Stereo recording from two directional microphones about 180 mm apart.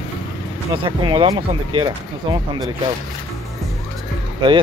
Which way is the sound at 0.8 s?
30° right (ahead or behind).